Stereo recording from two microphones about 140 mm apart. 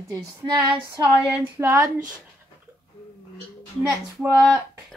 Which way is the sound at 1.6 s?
20° right (ahead or behind).